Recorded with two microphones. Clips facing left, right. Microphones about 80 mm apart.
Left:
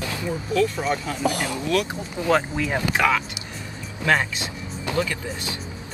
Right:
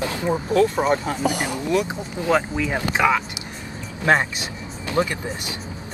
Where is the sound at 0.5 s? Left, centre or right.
Right.